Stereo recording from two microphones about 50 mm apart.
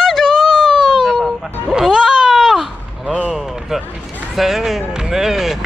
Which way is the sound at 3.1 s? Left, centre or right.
Right.